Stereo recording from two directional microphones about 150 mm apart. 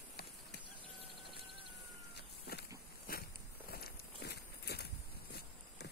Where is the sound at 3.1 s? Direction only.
75° left (ahead or behind).